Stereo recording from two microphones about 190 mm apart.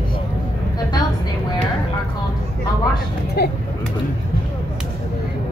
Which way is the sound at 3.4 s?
55° left (ahead or behind).